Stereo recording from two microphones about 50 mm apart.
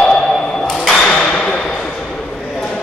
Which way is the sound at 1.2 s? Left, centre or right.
Centre.